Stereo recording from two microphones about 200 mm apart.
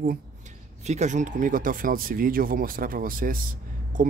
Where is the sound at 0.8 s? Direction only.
35° right (ahead or behind).